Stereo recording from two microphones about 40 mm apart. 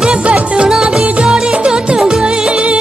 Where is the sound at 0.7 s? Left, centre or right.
Centre.